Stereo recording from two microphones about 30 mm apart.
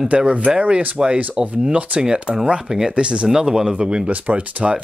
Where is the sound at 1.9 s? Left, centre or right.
Right.